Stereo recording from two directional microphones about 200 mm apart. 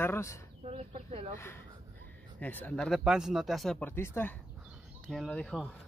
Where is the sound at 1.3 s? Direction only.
10° left (ahead or behind).